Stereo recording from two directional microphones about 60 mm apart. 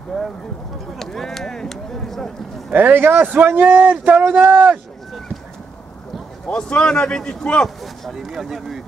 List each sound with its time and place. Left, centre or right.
0.1 s a man's voice: centre
0.9 s a sound: centre
2.7 s a man's voice: right
6.4 s a man's voice: centre
7.8 s speech: centre